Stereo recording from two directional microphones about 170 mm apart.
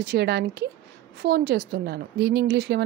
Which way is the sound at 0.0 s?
75° right (ahead or behind).